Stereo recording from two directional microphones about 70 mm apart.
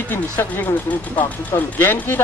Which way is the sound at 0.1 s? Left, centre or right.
Left.